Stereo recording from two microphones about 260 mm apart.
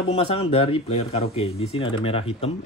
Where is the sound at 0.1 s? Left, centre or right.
Left.